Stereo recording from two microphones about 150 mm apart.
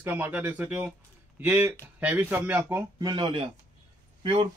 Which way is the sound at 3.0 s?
30° right (ahead or behind).